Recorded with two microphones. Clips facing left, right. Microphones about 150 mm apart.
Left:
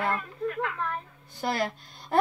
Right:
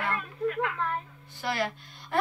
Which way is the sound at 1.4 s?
40° left (ahead or behind).